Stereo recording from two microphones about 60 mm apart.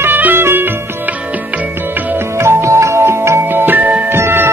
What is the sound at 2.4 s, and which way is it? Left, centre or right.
Music, right.